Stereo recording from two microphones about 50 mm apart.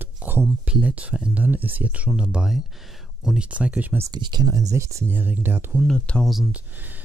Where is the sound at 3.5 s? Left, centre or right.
Right.